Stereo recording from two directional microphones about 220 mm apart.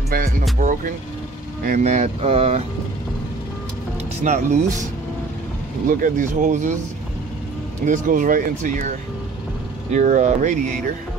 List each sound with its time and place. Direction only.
0.1 s speech: 40° right (ahead or behind)
1.6 s speech: 35° right (ahead or behind)
4.2 s speech: 35° right (ahead or behind)
5.9 s speech: 40° right (ahead or behind)
7.8 s speech: 35° right (ahead or behind)
9.9 s speech: 35° right (ahead or behind)